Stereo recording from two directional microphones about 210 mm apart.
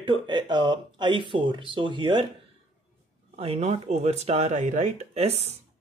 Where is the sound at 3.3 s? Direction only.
30° right (ahead or behind).